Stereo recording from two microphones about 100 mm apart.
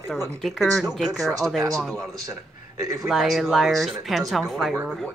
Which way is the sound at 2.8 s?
30° right (ahead or behind).